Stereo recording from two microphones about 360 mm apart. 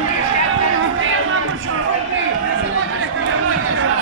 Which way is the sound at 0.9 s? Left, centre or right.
Right.